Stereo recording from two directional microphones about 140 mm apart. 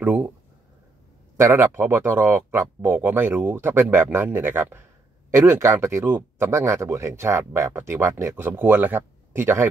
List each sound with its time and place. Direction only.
0.0 s speech: 10° right (ahead or behind)
1.3 s speech: 20° right (ahead or behind)